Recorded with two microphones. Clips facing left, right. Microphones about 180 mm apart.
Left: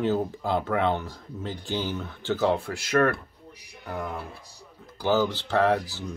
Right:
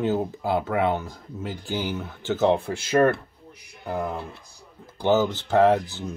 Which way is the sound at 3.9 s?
25° right (ahead or behind).